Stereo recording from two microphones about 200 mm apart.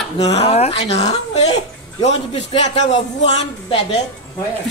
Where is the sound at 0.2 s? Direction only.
30° left (ahead or behind).